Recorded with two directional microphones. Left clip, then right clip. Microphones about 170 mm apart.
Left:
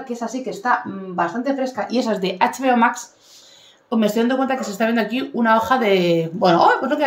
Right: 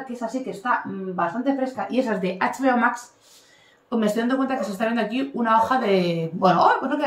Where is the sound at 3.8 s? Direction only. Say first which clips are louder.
Left 4 dB; 15° left (ahead or behind).